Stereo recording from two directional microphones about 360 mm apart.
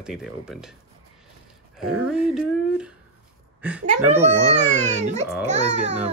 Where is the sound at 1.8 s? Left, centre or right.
Centre.